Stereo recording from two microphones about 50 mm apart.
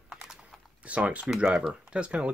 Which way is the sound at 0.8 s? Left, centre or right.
Right.